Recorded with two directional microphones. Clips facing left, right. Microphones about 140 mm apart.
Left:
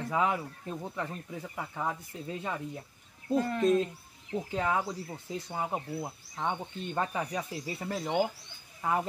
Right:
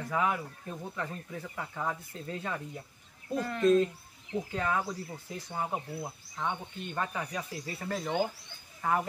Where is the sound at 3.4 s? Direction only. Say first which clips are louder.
Even; 35° left (ahead or behind).